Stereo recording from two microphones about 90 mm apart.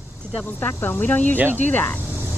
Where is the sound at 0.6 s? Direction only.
25° left (ahead or behind).